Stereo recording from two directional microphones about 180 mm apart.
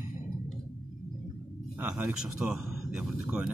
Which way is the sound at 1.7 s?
10° right (ahead or behind).